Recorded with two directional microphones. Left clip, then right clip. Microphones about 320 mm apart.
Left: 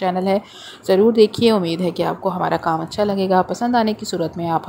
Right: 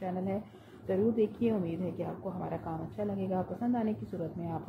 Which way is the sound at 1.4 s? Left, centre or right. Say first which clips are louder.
Left 16 dB; left.